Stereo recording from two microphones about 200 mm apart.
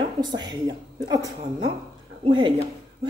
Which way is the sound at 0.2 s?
20° right (ahead or behind).